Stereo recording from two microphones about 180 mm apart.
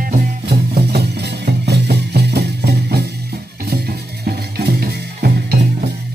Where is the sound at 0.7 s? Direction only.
65° right (ahead or behind).